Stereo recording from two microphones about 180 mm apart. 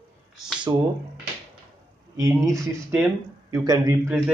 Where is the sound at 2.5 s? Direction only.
15° right (ahead or behind).